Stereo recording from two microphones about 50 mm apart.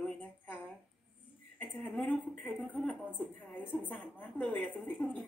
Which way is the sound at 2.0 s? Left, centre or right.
Left.